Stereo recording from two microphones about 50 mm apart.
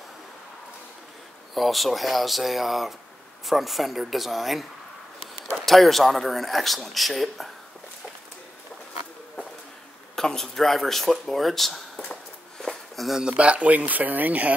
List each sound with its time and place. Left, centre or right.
1.5 s speech: centre
10.1 s speech: centre
12.5 s a sound: centre
13.4 s speech: right